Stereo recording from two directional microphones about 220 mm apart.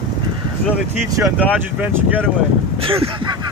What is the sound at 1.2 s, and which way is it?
Speech, 5° left (ahead or behind).